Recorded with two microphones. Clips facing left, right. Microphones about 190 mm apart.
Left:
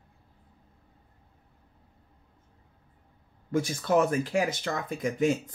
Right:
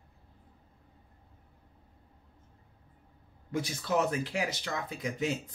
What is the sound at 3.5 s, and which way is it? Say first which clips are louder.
Speech: left 6 dB; 50° left (ahead or behind).